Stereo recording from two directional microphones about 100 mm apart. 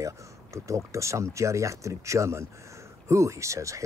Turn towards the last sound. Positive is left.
turn(degrees=-30)  # may be behind; listen again after turning